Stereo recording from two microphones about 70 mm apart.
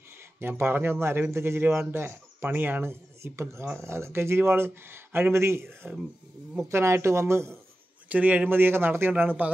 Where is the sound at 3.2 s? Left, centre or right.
Right.